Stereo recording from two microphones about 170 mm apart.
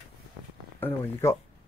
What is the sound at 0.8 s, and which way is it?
Speech, 15° left (ahead or behind).